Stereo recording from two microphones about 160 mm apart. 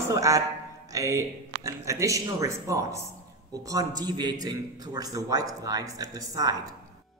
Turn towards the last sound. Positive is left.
turn(degrees=-20)  # may be behind; listen again after turning